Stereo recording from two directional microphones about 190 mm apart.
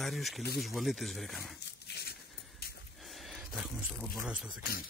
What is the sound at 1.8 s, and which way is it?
Dog, 55° left (ahead or behind).